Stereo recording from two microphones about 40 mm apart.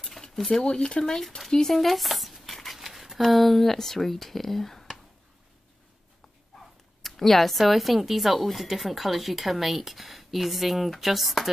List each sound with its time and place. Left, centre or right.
0.5 s speech: left
1.7 s a sound: centre
2.8 s speech: centre
7.0 s speech: centre